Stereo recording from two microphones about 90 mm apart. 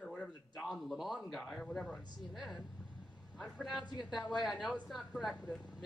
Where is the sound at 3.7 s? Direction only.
55° left (ahead or behind).